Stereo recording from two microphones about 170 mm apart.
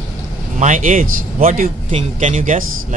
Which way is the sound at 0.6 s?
45° right (ahead or behind).